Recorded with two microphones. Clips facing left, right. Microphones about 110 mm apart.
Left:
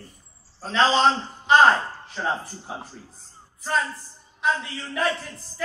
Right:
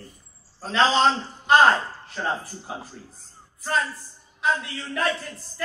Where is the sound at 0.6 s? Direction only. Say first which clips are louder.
Even; centre (ahead or behind).